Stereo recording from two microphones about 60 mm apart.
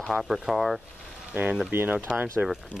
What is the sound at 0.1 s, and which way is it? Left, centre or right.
Speech, centre.